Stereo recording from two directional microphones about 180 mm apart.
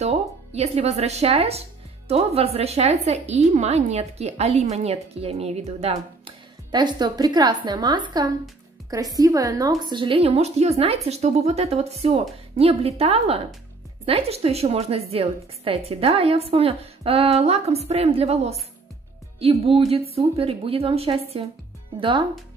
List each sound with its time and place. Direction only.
0.0 s a woman's voice: 35° right (ahead or behind)
19.9 s a woman's voice: 35° right (ahead or behind)